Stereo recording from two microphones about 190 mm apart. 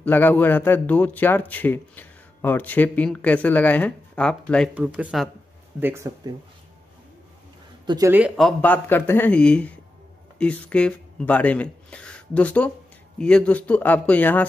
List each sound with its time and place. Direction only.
0.0 s a man's voice: 10° left (ahead or behind)
4.7 s speech: 5° right (ahead or behind)
7.8 s speech: 20° right (ahead or behind)
8.1 s a man's voice: 5° right (ahead or behind)